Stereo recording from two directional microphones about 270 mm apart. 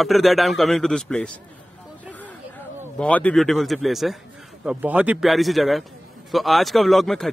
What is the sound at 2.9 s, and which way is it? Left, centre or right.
Speech, centre.